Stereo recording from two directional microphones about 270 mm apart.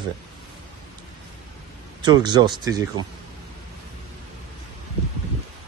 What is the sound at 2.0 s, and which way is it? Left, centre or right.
Speech, centre.